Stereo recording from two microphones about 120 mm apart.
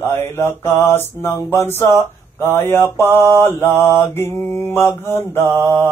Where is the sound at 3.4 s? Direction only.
20° left (ahead or behind).